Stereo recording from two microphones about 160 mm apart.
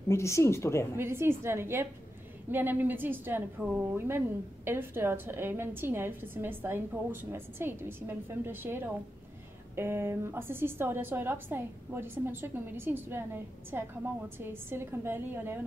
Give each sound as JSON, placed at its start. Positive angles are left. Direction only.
{"t": 0.1, "sound": "speech", "side_deg": 15}
{"t": 0.9, "sound": "a woman's voice", "side_deg": -15}